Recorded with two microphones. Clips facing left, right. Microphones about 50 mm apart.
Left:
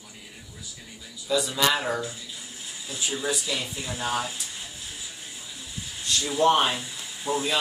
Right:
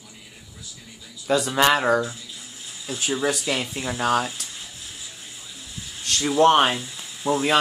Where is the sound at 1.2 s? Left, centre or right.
Right.